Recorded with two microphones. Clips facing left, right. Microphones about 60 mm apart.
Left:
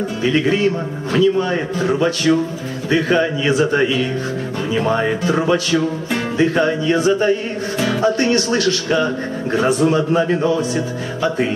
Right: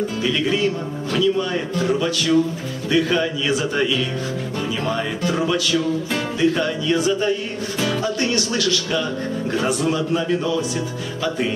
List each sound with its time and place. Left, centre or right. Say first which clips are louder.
0.2 s a man's voice: left 5 dB; left